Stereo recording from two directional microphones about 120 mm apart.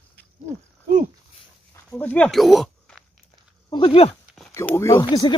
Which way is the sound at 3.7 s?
45° left (ahead or behind).